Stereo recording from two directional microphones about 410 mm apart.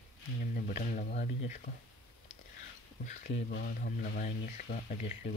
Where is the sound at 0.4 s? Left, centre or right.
Centre.